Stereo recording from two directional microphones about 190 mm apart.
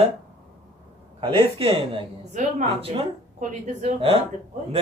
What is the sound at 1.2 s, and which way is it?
A woman's voice, 30° right (ahead or behind).